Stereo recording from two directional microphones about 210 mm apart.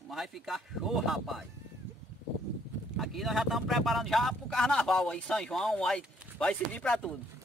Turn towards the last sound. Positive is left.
turn(degrees=5)  # may be behind; listen again after turning